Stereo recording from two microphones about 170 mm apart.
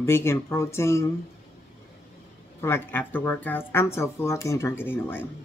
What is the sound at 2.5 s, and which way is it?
Speech, 15° left (ahead or behind).